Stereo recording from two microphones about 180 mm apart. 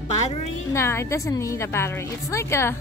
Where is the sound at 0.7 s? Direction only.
15° left (ahead or behind).